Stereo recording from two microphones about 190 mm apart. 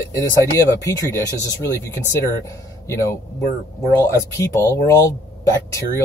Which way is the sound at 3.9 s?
15° left (ahead or behind).